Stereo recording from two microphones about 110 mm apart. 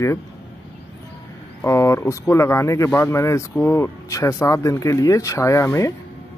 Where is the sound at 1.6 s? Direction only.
25° left (ahead or behind).